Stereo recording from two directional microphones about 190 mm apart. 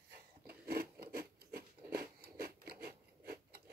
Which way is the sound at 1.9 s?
55° right (ahead or behind).